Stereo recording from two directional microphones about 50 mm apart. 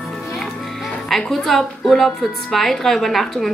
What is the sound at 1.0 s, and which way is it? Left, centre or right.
Speech, centre.